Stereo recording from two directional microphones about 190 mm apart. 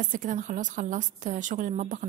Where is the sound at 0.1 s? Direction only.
45° right (ahead or behind).